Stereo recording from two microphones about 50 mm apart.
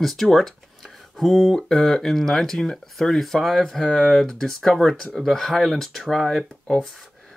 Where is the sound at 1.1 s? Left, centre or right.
Centre.